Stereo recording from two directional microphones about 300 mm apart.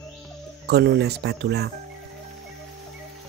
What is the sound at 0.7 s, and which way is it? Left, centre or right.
Speech, right.